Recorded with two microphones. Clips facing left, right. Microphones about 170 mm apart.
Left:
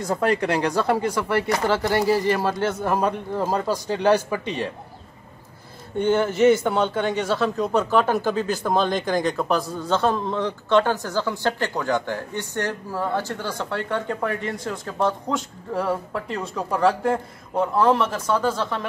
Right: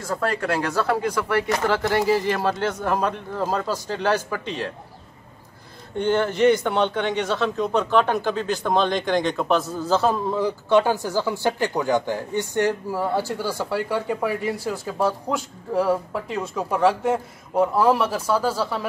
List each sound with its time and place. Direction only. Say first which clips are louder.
0.0 s speech: left 3 dB; 20° left (ahead or behind)
1.9 s a man's voice: left 1 dB; centre (ahead or behind)
5.9 s a man's voice: left 1 dB; 10° left (ahead or behind)